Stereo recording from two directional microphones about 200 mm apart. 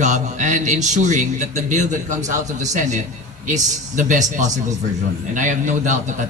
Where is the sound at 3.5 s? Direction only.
40° right (ahead or behind).